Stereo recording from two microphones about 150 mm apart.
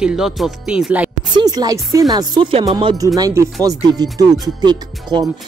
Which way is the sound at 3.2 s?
25° right (ahead or behind).